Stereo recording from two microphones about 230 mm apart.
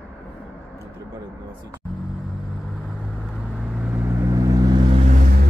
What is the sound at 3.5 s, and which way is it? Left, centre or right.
Vehicle, centre.